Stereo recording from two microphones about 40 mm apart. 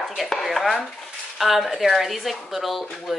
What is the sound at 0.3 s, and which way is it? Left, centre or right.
Speech, centre.